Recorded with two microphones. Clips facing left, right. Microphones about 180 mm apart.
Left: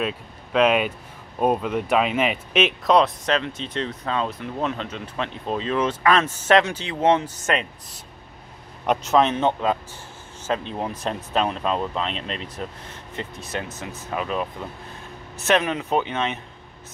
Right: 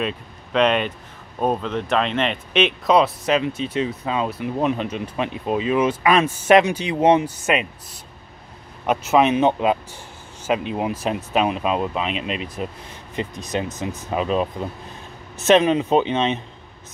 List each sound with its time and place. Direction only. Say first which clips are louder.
0.0 s speech: right 1 dB; 5° left (ahead or behind); by 16.3 s 20° right (ahead or behind)